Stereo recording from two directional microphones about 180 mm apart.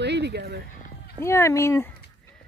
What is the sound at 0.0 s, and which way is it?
Music, 70° right (ahead or behind).